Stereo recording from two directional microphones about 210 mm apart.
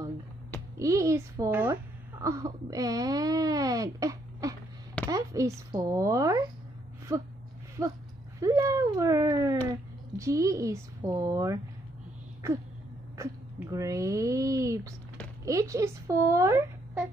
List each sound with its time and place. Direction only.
0.7 s a woman's voice: 15° right (ahead or behind)